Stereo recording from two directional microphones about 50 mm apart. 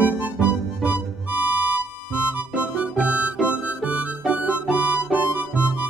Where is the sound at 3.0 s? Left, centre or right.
Right.